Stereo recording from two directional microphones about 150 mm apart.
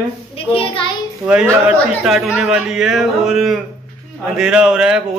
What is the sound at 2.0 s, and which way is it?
Speech, centre (ahead or behind).